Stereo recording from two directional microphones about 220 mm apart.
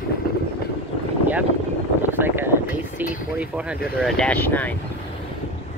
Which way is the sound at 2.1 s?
10° right (ahead or behind).